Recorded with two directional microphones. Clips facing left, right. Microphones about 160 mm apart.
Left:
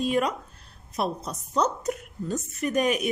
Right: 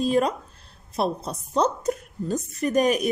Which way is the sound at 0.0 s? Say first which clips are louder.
Right 3 dB; 35° right (ahead or behind).